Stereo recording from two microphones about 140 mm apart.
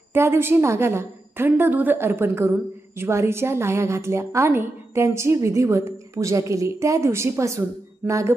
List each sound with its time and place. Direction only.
0.1 s a woman's voice: 15° right (ahead or behind)